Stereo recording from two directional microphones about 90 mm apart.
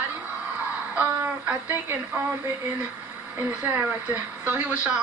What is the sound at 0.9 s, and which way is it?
A woman's voice, 15° right (ahead or behind).